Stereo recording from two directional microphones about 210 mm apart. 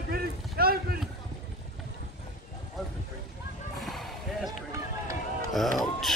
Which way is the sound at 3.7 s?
Centre (ahead or behind).